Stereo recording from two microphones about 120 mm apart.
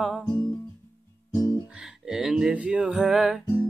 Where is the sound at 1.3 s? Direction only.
35° left (ahead or behind).